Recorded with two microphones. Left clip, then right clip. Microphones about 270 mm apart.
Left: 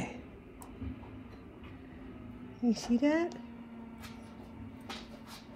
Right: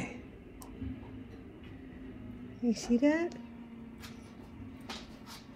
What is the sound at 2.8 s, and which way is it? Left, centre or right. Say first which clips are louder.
Speech: right 4 dB; left.